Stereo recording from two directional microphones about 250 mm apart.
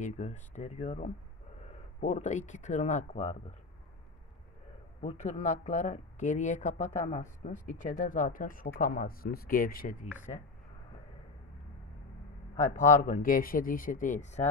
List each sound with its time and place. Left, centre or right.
0.0 s speech: left
5.0 s a man's voice: left
12.5 s a man's voice: left